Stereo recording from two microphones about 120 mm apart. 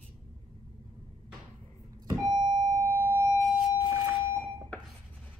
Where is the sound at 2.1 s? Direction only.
40° right (ahead or behind).